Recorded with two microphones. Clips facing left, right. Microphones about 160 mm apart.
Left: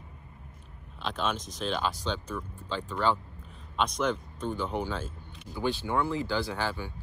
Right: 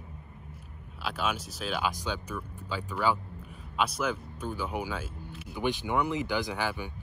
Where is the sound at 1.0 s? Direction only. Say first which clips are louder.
Left 1 dB; 10° right (ahead or behind).